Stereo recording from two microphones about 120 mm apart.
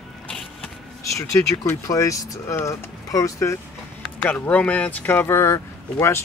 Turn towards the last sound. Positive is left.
turn(degrees=20)  # may be behind; listen again after turning